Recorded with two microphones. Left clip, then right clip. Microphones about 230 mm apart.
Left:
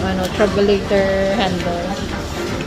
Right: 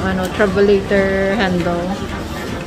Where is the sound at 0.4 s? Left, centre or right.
Right.